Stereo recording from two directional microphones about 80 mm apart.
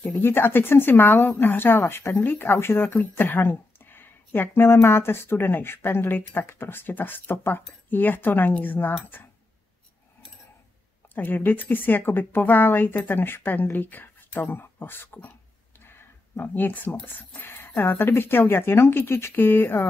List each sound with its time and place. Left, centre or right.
0.0 s speech: left
11.1 s speech: left
15.8 s a sound: left
17.7 s speech: left